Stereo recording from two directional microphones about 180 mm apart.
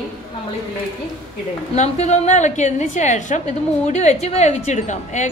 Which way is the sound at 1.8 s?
40° left (ahead or behind).